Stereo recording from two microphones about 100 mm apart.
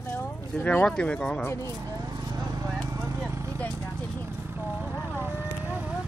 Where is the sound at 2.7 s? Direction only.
30° right (ahead or behind).